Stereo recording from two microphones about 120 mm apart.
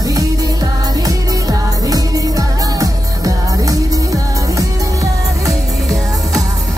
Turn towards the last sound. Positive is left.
turn(degrees=-30)  # may be behind; listen again after turning